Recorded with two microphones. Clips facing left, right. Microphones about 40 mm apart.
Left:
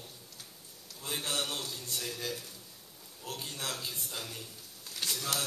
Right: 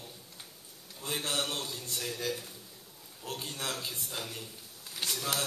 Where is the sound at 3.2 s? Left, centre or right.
Centre.